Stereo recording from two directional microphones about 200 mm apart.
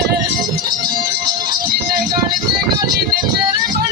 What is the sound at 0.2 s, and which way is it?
Music, 20° right (ahead or behind).